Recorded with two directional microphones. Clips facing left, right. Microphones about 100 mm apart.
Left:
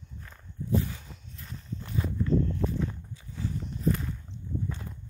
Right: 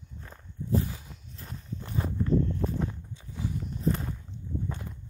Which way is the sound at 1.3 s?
30° right (ahead or behind).